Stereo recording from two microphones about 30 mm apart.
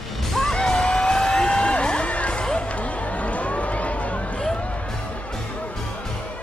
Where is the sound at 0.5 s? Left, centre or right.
Left.